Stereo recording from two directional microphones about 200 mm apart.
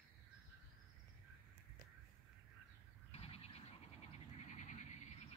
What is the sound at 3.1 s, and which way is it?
Frog, 30° left (ahead or behind).